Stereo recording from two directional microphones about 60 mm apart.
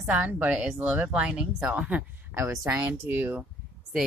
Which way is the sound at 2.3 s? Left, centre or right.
Right.